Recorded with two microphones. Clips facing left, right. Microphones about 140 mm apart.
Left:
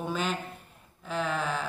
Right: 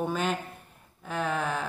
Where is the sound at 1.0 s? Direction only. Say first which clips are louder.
Right 1 dB; 55° right (ahead or behind).